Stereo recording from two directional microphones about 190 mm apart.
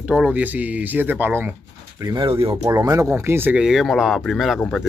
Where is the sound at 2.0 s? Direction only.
25° right (ahead or behind).